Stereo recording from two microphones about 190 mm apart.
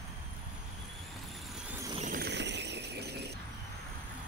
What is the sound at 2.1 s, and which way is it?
Squeal, 60° right (ahead or behind).